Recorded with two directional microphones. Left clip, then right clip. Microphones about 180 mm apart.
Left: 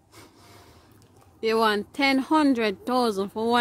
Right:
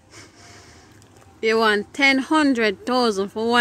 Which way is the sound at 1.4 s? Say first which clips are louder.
Right 4 dB; 10° left (ahead or behind).